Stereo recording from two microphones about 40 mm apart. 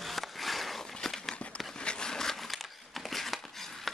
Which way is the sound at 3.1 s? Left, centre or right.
Centre.